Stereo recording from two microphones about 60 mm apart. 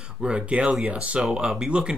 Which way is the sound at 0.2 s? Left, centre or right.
Centre.